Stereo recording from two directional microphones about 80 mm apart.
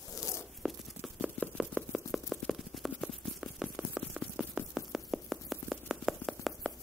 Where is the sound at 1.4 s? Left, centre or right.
Left.